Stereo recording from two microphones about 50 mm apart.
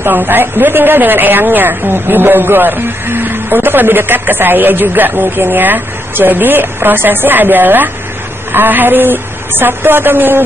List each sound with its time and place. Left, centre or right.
0.1 s a woman's voice: right